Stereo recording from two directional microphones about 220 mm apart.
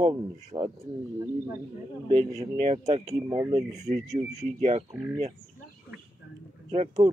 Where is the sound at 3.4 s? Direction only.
15° right (ahead or behind).